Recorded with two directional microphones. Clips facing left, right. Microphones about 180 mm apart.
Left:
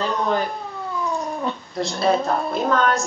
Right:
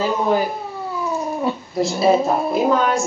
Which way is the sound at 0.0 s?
5° right (ahead or behind).